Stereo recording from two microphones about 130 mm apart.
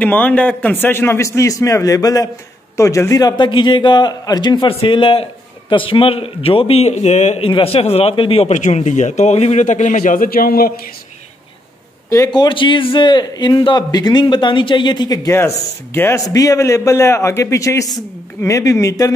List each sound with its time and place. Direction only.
0.0 s a man's voice: 10° left (ahead or behind); by 8.5 s 45° left (ahead or behind)
8.5 s a man's voice: 70° left (ahead or behind); by 10.5 s 90° left
12.3 s a man's voice: 35° left (ahead or behind)
15.3 s a man's voice: 20° left (ahead or behind)